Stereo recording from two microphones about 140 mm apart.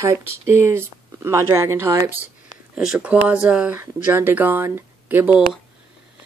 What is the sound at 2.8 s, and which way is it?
Speech, 5° right (ahead or behind).